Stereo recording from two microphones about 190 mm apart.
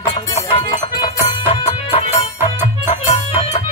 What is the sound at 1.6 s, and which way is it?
Music, 35° left (ahead or behind).